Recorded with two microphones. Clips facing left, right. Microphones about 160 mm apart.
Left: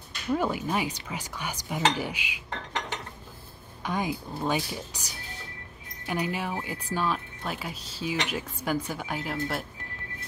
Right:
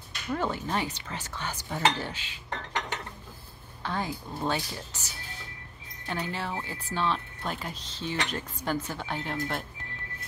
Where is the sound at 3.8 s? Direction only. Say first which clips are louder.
Left 3 dB; 15° left (ahead or behind).